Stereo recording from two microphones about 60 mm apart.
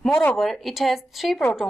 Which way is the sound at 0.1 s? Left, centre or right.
Left.